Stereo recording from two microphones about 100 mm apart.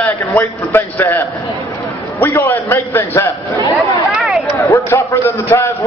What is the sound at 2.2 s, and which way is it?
A man's voice, 20° left (ahead or behind).